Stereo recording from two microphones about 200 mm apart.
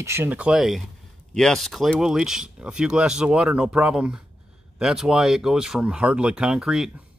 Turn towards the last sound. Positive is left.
turn(degrees=0)  # may be behind; listen again after turning